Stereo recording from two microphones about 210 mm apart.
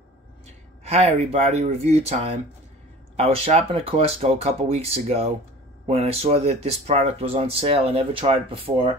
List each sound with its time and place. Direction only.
0.5 s speech: 30° right (ahead or behind)